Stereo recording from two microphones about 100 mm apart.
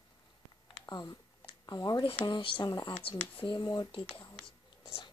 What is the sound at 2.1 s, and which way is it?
Speech, 55° left (ahead or behind).